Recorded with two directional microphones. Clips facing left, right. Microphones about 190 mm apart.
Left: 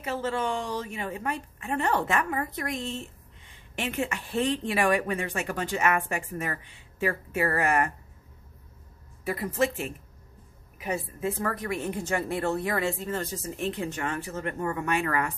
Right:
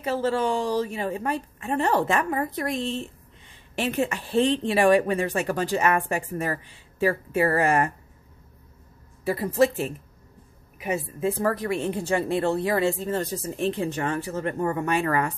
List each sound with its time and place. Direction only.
0.0 s speech: 35° right (ahead or behind)
9.2 s speech: 30° right (ahead or behind)
11.1 s speech: 30° right (ahead or behind)